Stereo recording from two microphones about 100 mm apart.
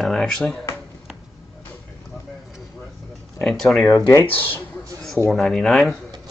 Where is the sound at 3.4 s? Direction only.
5° left (ahead or behind).